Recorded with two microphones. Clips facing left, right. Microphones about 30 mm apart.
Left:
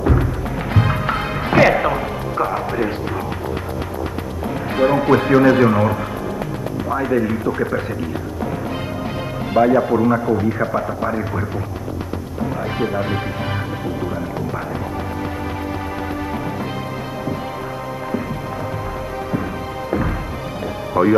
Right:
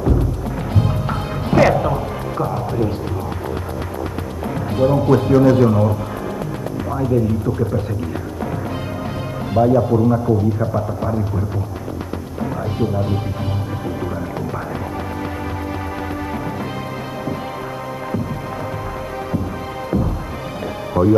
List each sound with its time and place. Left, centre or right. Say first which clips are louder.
0.0 s music: left 1 dB; left
0.4 s music: left 1 dB; left
0.7 s music: left 3 dB; left
4.5 s a man's voice: left 1 dB; left
7.1 s speech: right 2 dB; left
7.5 s speech: left 1 dB; left
8.5 s music: left 1 dB; centre
9.6 s speech: even; left
10.7 s speech: left 1 dB; left
12.6 s speech: even; left
13.8 s music: even; centre
19.3 s music: left 1 dB; left
21.0 s speech: even; left